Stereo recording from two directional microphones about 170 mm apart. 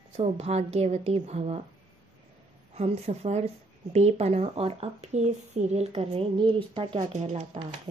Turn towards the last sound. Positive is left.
turn(degrees=-40)  # may be behind; listen again after turning